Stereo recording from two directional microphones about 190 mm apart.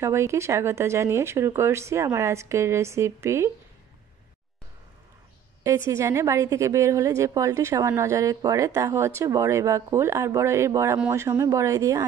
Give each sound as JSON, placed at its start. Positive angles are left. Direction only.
{"t": 0.0, "sound": "a woman's voice", "side_deg": -15}
{"t": 5.9, "sound": "a woman's voice", "side_deg": -15}